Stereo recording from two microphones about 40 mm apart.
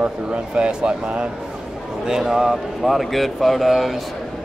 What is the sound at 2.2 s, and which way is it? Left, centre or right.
Speech, centre.